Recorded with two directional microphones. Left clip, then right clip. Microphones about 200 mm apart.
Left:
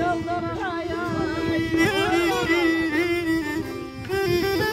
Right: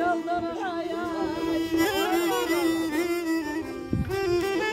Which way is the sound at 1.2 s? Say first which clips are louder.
Left 2 dB; 20° right (ahead or behind).